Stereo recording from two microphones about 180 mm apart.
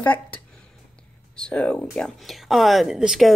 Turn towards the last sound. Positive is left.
turn(degrees=0)  # may be behind; listen again after turning